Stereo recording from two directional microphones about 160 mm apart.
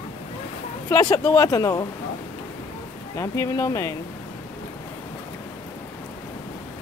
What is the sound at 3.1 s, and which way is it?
Speech, 20° left (ahead or behind).